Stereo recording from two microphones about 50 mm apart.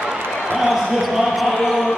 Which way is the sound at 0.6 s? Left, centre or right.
Centre.